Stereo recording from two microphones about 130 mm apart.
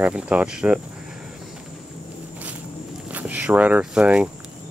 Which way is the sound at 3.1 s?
10° right (ahead or behind).